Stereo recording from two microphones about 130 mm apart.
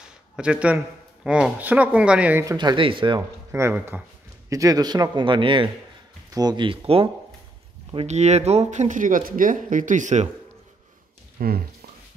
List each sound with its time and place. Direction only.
0.4 s speech: 10° right (ahead or behind)
2.4 s a man's voice: 35° right (ahead or behind)
3.2 s a man's voice: 20° right (ahead or behind); by 7.1 s 45° right (ahead or behind)
8.1 s speech: 60° right (ahead or behind)
11.4 s speech: 90° right